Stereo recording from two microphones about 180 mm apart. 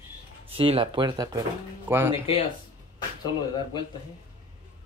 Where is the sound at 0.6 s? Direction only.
30° right (ahead or behind); by 2.2 s 15° right (ahead or behind).